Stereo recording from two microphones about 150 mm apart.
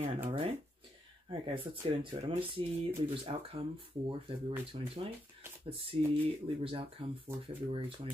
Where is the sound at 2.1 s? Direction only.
40° right (ahead or behind).